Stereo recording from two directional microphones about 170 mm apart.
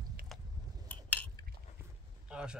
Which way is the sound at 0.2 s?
60° right (ahead or behind).